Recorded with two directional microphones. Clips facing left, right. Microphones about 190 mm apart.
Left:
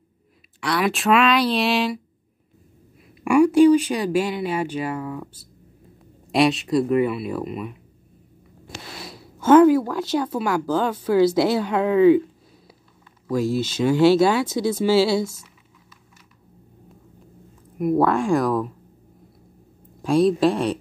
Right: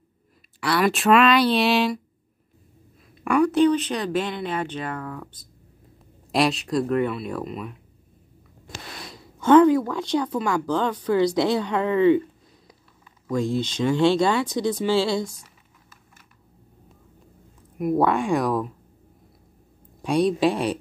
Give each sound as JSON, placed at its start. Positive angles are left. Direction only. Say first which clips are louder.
{"t": 0.6, "sound": "speech", "louder": "right 1 dB", "side_deg": 0}
{"t": 3.3, "sound": "speech", "louder": "left 5 dB", "side_deg": 10}
{"t": 6.3, "sound": "speech", "louder": "left 3 dB", "side_deg": 0}
{"t": 9.0, "sound": "speech", "louder": "left 1 dB", "side_deg": 5}
{"t": 17.7, "sound": "speech", "louder": "left 2 dB", "side_deg": 0}
{"t": 20.0, "sound": "speech", "louder": "left 3 dB", "side_deg": 0}